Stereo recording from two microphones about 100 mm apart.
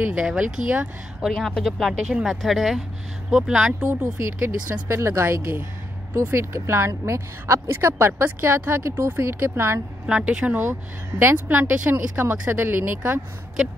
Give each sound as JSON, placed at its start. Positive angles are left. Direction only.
{"t": 0.1, "sound": "speech", "side_deg": -10}
{"t": 1.3, "sound": "speech", "side_deg": 5}
{"t": 4.0, "sound": "speech", "side_deg": -25}
{"t": 10.0, "sound": "speech", "side_deg": -10}
{"t": 10.6, "sound": "speech", "side_deg": -25}